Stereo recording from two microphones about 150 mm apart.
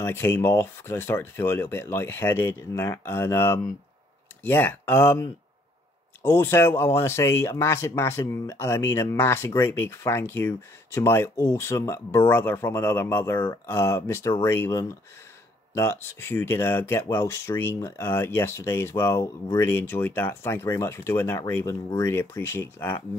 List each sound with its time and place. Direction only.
0.0 s speech: 15° left (ahead or behind)